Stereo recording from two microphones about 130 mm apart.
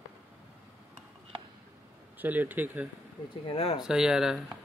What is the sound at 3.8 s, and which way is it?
Speech, 5° right (ahead or behind).